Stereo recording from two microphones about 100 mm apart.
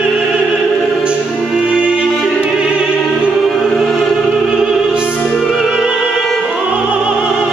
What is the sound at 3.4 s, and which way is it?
Music, centre (ahead or behind).